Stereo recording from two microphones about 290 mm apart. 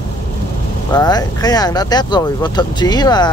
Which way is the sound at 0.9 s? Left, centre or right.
Centre.